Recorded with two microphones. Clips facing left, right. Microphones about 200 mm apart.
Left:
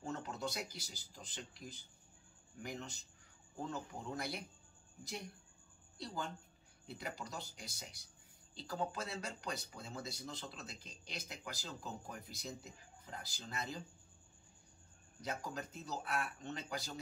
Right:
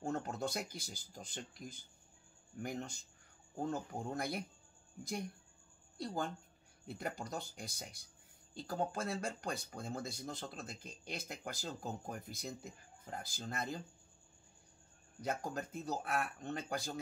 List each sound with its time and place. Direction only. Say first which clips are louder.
0.0 s a sound: right 4 dB; 50° right (ahead or behind)
1.1 s speech: right 3 dB; 50° right (ahead or behind)
5.9 s speech: right 4 dB; 50° right (ahead or behind)
15.2 s speech: right 4 dB; 50° right (ahead or behind)